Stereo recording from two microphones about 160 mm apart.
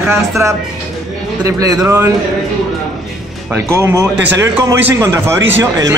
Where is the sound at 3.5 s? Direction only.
15° right (ahead or behind).